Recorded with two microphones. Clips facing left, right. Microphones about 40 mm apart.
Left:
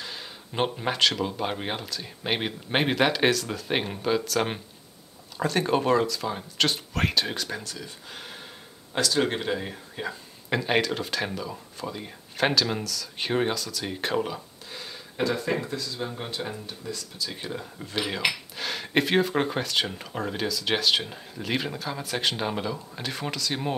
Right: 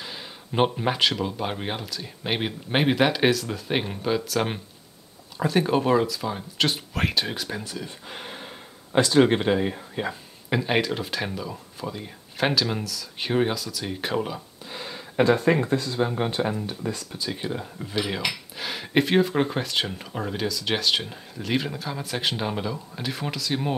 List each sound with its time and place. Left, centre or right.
0.0 s a sound: centre
1.1 s speech: centre
7.6 s speech: centre
10.5 s speech: centre
14.7 s a sound: centre
15.2 s speech: right
17.3 s speech: centre